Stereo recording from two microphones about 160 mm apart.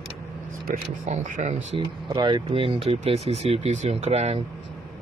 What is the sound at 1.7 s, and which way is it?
Speech, 30° right (ahead or behind).